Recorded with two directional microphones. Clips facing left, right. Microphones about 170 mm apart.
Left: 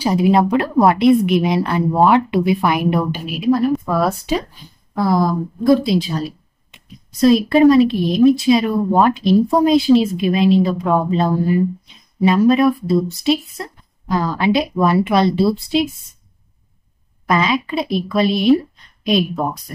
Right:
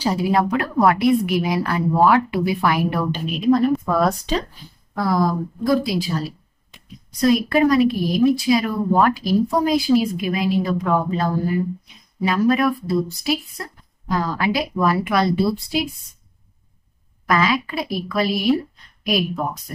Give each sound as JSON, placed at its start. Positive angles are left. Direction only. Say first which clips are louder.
{"t": 0.0, "sound": "speech", "louder": "left 5 dB", "side_deg": 15}
{"t": 3.3, "sound": "speech", "louder": "even", "side_deg": 5}
{"t": 4.9, "sound": "speech", "louder": "left 3 dB", "side_deg": 25}
{"t": 17.3, "sound": "speech", "louder": "left 2 dB", "side_deg": 20}